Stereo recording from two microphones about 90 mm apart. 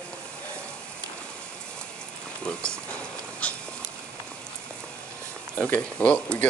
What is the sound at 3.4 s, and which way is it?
Goat, 15° left (ahead or behind).